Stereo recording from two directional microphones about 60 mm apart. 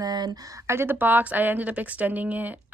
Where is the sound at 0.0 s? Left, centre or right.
Right.